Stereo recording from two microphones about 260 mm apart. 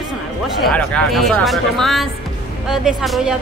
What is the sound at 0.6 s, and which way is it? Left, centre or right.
Speech, centre.